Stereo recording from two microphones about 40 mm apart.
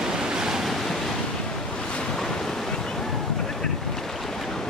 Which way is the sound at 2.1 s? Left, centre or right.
Centre.